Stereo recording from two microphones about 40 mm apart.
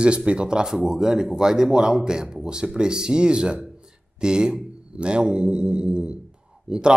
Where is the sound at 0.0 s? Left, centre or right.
Right.